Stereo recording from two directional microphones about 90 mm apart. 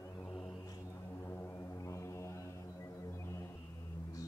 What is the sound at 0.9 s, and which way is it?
Music, 30° left (ahead or behind).